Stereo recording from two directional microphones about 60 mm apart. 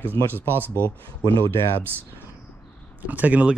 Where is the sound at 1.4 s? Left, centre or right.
Left.